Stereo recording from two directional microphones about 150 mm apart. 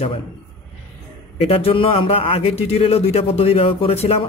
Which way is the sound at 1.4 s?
40° left (ahead or behind).